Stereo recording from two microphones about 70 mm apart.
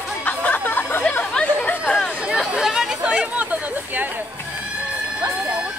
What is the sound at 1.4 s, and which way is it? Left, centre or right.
Chatter, centre.